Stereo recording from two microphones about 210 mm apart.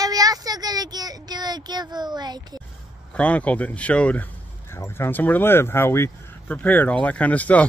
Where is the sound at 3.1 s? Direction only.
5° left (ahead or behind).